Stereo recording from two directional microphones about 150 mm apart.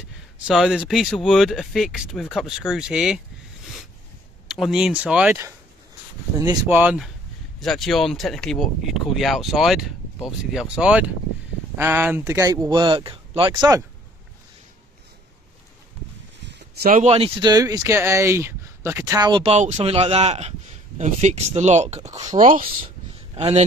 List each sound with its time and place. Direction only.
0.5 s speech: 5° right (ahead or behind)
4.5 s speech: centre (ahead or behind)
6.7 s speech: 10° right (ahead or behind)
7.6 s speech: centre (ahead or behind); by 12.5 s 15° right (ahead or behind)
12.6 s speech: 30° right (ahead or behind)
16.5 s a sound: 75° right (ahead or behind)
17.0 s speech: 40° right (ahead or behind)
17.4 s speech: 25° right (ahead or behind)
19.4 s speech: 45° right (ahead or behind)
23.3 s speech: 40° right (ahead or behind)